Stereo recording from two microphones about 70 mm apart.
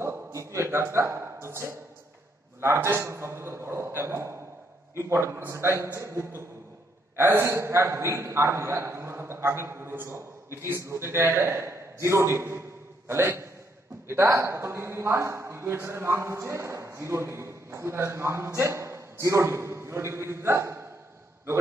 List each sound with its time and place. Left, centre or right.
0.0 s a sound: right
2.6 s a man's voice: right
7.2 s speech: right